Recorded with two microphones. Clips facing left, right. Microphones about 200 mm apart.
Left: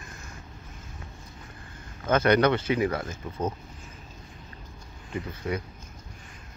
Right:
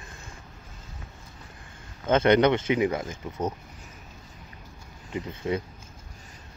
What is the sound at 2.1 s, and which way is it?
Speech, 20° right (ahead or behind).